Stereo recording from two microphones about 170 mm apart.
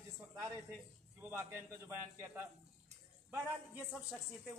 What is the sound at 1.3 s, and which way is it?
A man's voice, 15° right (ahead or behind).